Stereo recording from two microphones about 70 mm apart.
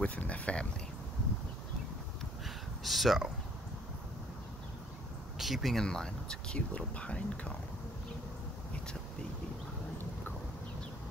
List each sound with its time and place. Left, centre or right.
0.0 s speech: centre
2.4 s a sound: centre
5.4 s speech: centre
5.9 s speech: centre